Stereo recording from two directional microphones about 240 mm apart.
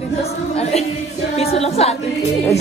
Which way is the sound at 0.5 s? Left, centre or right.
Left.